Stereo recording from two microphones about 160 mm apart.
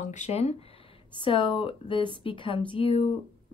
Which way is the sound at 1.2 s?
30° left (ahead or behind).